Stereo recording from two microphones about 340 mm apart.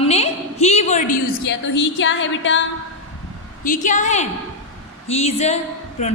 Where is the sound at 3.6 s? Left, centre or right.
Left.